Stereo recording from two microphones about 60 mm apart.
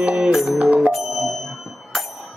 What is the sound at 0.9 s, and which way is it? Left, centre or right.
Music, centre.